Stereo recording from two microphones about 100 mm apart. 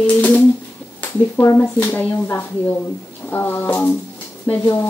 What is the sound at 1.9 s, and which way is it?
Speech, 20° left (ahead or behind).